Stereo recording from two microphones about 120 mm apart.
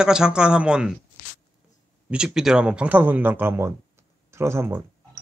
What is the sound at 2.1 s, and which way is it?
Speech, 5° right (ahead or behind).